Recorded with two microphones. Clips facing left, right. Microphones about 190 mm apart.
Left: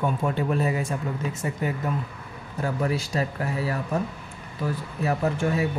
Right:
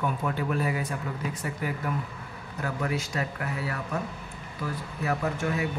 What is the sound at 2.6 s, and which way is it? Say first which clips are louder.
Speech: left 4 dB; 30° left (ahead or behind).